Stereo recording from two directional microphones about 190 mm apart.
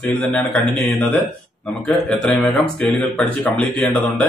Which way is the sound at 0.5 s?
5° left (ahead or behind).